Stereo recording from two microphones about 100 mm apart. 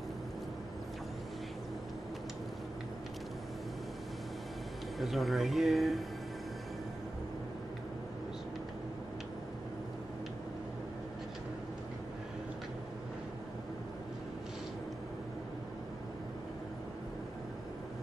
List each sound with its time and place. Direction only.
4.9 s speech: centre (ahead or behind)